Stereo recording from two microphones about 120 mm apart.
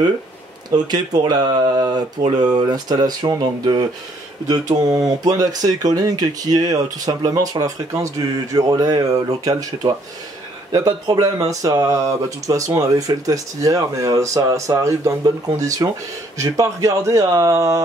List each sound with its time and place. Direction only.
0.7 s speech: 35° right (ahead or behind)
4.8 s speech: 30° right (ahead or behind)